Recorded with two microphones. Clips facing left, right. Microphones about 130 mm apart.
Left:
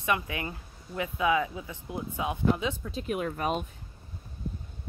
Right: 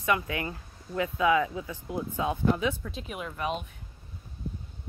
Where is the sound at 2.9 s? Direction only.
50° left (ahead or behind).